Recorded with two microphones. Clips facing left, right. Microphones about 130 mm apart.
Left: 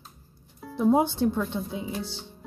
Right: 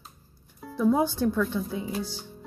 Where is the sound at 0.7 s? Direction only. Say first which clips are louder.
Left 1 dB; 25° left (ahead or behind).